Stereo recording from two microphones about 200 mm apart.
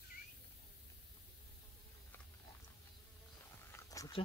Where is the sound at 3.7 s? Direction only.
20° left (ahead or behind).